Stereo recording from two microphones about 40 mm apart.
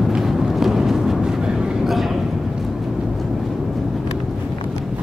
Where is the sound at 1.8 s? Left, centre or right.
Centre.